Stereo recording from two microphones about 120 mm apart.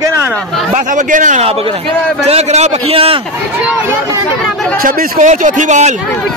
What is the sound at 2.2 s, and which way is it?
Speech, 65° right (ahead or behind).